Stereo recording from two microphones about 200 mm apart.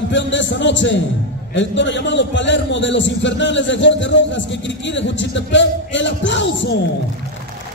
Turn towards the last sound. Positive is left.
turn(degrees=65)  # may be behind; listen again after turning